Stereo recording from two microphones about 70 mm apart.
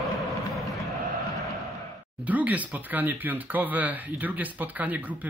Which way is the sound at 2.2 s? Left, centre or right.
Right.